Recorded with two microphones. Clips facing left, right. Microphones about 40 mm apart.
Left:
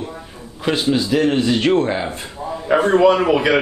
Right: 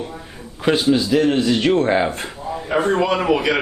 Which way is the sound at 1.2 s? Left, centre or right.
Centre.